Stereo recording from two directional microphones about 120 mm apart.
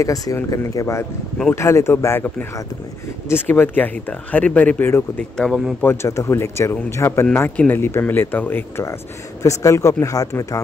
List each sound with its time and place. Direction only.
0.0 s speech: 30° left (ahead or behind)